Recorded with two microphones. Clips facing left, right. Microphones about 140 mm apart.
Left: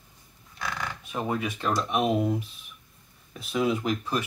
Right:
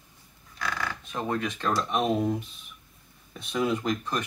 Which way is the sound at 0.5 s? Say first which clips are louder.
Right 1 dB; 20° left (ahead or behind).